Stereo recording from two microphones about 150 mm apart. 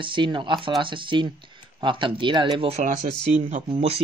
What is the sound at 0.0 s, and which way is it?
Speech, 35° right (ahead or behind).